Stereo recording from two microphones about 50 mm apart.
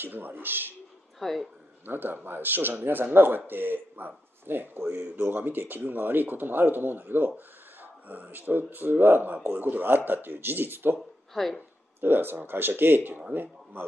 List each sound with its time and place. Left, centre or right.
0.0 s speech: right
1.2 s speech: centre
1.9 s speech: right
11.0 s speech: centre
12.0 s speech: right